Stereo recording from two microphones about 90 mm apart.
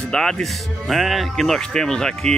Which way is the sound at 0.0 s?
5° left (ahead or behind).